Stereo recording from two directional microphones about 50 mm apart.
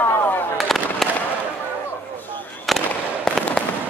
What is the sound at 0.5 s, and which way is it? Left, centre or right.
Fireworks, centre.